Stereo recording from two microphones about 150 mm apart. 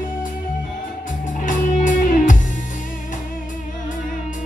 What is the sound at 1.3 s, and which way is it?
Music, 60° left (ahead or behind).